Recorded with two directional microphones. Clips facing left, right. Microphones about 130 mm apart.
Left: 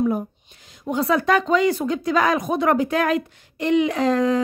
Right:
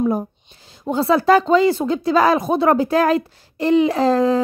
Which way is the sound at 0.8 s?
30° right (ahead or behind).